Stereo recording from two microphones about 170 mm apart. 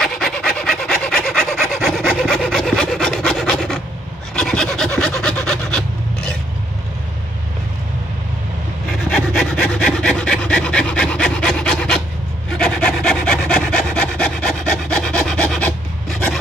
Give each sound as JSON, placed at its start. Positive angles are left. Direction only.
{"t": 0.0, "sound": "rub", "side_deg": 5}
{"t": 4.4, "sound": "filing", "side_deg": 5}
{"t": 9.1, "sound": "wood", "side_deg": 5}
{"t": 12.4, "sound": "rub", "side_deg": 5}